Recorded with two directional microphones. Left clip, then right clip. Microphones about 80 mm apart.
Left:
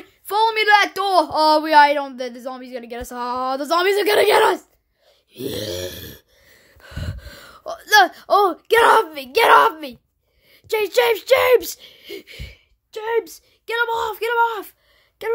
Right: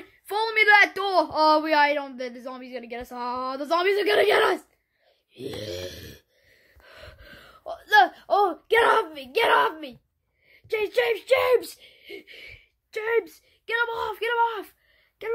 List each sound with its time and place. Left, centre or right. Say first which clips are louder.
0.3 s a sound: left 4 dB; left
0.9 s speech: left 6 dB; left
1.2 s speech: left 4 dB; left
5.3 s gasp: left 7 dB; left
7.3 s speech: left 5 dB; left
10.5 s speech: left 6 dB; left
11.9 s speech: left 6 dB; left
13.7 s speech: left 5 dB; left
15.2 s speech: left 7 dB; left